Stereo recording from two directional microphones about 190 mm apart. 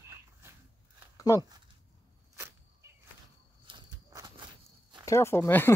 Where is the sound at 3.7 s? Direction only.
25° right (ahead or behind).